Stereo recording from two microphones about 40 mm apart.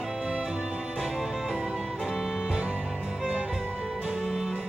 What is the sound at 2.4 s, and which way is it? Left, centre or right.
Music, centre.